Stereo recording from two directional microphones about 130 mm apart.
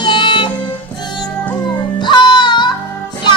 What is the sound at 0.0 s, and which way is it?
Music, 35° left (ahead or behind).